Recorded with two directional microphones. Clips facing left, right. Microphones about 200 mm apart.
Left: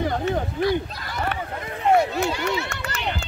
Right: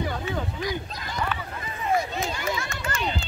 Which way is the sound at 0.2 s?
55° left (ahead or behind).